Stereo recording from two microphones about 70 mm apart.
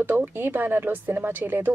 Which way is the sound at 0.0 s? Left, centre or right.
Right.